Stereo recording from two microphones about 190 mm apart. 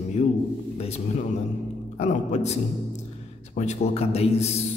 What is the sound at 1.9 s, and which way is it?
A man's voice, 35° left (ahead or behind).